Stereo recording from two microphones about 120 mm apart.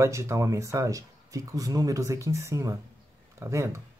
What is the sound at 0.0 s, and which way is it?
Speech, 25° right (ahead or behind).